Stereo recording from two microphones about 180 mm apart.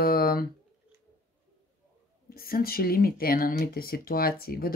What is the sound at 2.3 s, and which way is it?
Speech, 55° left (ahead or behind).